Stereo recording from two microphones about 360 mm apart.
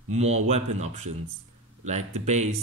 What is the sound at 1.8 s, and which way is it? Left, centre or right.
Speech, centre.